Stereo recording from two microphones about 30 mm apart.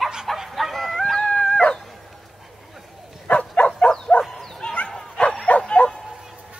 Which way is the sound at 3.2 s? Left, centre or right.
Left.